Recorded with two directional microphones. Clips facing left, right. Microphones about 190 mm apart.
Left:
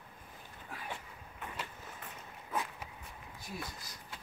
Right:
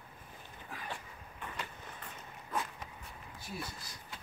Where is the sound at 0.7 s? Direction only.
5° left (ahead or behind).